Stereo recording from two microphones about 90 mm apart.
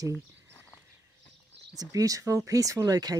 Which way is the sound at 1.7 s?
40° right (ahead or behind).